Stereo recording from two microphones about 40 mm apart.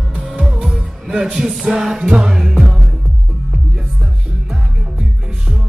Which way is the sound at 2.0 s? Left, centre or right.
Right.